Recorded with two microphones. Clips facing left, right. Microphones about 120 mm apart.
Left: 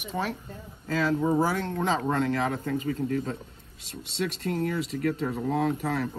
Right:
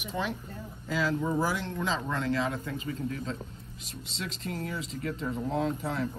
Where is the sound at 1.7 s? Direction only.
55° left (ahead or behind).